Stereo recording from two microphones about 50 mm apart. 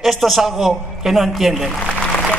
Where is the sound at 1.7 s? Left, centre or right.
Centre.